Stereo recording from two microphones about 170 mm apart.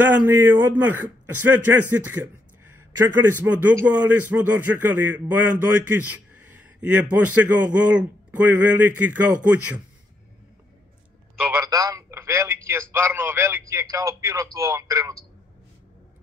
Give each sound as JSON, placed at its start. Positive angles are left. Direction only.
{"t": 0.0, "sound": "a man's voice", "side_deg": -10}
{"t": 11.5, "sound": "telephone", "side_deg": -20}
{"t": 12.9, "sound": "a man's voice", "side_deg": -15}